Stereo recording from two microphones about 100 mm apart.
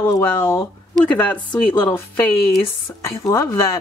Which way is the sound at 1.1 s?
15° left (ahead or behind).